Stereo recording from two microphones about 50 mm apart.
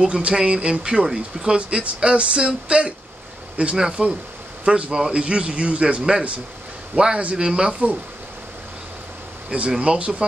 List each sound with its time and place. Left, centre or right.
0.0 s a man's voice: centre
9.5 s a man's voice: right